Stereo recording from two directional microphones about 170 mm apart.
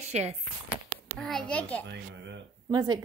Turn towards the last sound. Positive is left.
turn(degrees=-25)  # may be behind; listen again after turning